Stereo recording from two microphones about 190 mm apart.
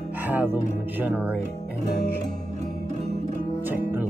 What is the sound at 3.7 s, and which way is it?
Music, 10° right (ahead or behind).